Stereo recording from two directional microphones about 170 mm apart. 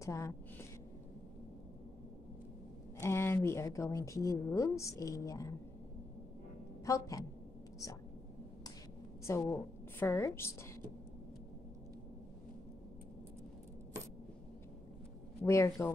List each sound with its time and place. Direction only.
0.0 s a woman's voice: 20° left (ahead or behind)
3.0 s speech: 15° left (ahead or behind)
6.9 s a woman's voice: 20° left (ahead or behind)
9.2 s a woman's voice: 15° left (ahead or behind)
15.4 s speech: 15° left (ahead or behind)